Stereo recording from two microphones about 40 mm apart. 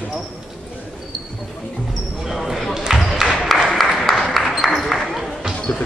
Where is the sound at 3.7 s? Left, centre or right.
Centre.